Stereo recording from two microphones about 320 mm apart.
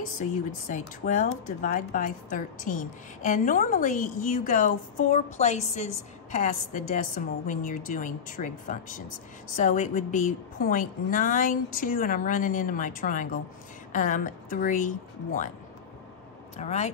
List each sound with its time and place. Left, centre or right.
0.2 s speech: left
16.5 s speech: left